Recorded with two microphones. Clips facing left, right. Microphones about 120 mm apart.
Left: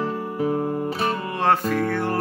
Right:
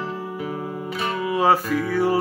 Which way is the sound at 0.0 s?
35° left (ahead or behind).